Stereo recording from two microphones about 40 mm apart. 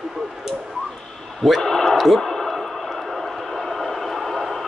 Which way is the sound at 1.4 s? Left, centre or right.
Centre.